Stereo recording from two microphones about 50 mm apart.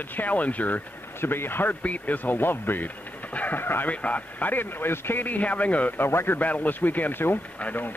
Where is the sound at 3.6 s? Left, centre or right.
Left.